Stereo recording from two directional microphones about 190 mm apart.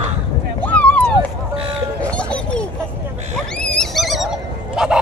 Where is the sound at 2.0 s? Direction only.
5° left (ahead or behind).